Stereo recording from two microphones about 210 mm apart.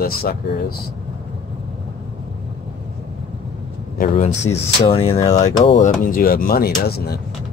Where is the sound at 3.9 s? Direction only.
35° left (ahead or behind).